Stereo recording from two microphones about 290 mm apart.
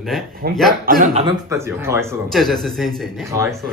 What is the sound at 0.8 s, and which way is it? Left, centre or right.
Speech, right.